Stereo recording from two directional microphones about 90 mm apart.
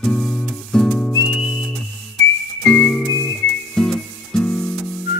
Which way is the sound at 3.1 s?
40° left (ahead or behind).